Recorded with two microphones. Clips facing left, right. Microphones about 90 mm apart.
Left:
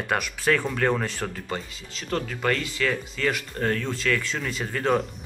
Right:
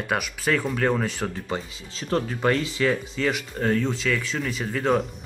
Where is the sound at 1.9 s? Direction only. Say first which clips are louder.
Right 3 dB; 25° right (ahead or behind); by 5.1 s centre (ahead or behind).